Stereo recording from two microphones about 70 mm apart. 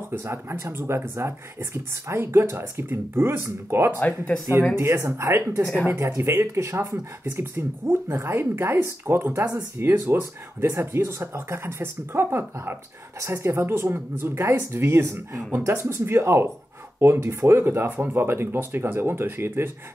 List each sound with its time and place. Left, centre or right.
0.2 s speech: right
4.3 s speech: centre
5.0 s speech: right